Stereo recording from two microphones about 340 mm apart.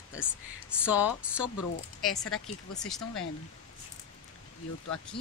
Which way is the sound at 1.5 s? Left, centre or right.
Left.